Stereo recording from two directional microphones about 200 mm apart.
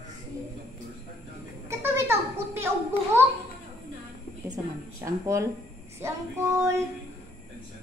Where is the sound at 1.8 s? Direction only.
10° right (ahead or behind).